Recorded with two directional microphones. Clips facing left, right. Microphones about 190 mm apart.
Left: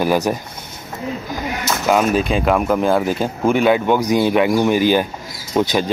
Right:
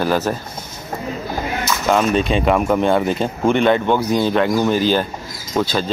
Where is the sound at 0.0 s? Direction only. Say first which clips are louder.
Left 1 dB; 15° left (ahead or behind).